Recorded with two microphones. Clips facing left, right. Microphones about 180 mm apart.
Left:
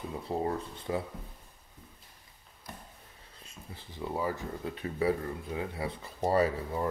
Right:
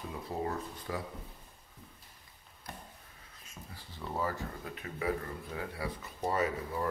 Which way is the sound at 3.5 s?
20° left (ahead or behind).